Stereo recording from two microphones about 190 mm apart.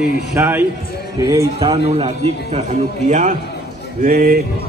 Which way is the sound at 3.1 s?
40° right (ahead or behind).